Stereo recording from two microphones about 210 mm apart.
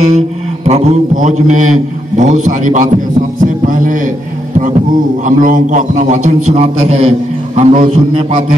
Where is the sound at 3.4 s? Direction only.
40° right (ahead or behind).